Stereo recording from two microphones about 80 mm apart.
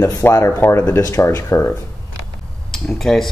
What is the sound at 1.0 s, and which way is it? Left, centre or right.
Speech, left.